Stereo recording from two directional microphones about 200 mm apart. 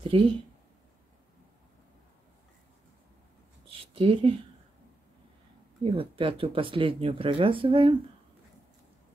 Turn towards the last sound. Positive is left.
turn(degrees=-25)  # may be behind; listen again after turning